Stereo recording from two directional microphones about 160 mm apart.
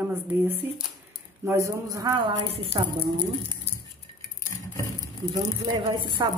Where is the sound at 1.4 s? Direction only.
20° right (ahead or behind); by 3.1 s 35° right (ahead or behind).